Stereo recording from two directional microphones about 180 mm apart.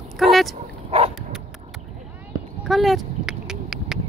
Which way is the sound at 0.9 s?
30° right (ahead or behind).